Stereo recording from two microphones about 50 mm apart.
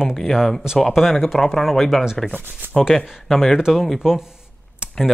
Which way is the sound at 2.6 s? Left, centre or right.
Right.